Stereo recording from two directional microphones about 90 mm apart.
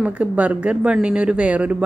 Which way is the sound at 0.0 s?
15° right (ahead or behind).